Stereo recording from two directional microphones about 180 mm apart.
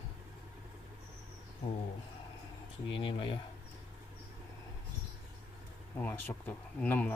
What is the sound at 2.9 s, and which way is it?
Speech, 30° left (ahead or behind).